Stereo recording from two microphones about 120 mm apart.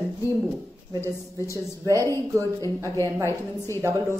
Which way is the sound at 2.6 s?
25° left (ahead or behind).